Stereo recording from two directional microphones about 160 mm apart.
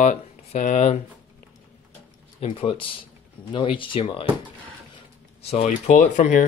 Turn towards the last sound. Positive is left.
turn(degrees=50)  # may be behind; listen again after turning